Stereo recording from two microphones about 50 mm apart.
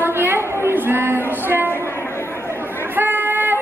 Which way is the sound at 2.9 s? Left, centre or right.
Right.